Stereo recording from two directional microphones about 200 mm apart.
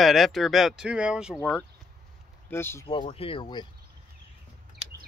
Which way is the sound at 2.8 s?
25° left (ahead or behind).